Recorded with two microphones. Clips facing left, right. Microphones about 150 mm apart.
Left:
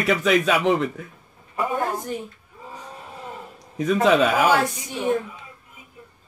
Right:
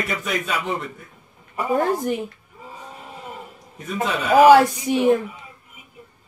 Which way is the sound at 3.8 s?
90° left.